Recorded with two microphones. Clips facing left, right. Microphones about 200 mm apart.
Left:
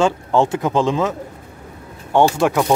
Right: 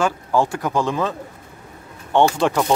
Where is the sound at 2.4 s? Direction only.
10° left (ahead or behind).